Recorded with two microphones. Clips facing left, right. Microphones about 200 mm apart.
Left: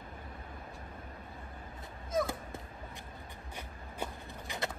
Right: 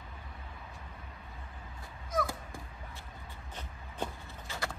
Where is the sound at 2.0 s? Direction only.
25° left (ahead or behind).